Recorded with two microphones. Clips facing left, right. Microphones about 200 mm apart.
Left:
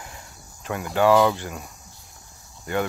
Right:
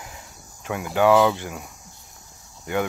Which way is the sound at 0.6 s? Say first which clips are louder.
Right 1 dB; 10° right (ahead or behind).